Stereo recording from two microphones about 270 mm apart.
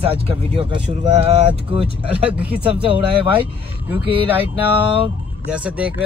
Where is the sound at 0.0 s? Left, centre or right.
Centre.